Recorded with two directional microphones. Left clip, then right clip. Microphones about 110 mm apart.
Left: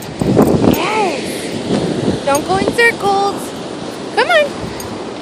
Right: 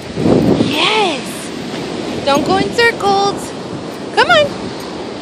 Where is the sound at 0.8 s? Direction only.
25° right (ahead or behind).